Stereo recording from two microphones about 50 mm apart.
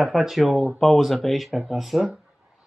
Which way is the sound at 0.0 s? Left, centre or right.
Centre.